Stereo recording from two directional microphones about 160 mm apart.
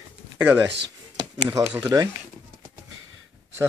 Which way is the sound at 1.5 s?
15° right (ahead or behind).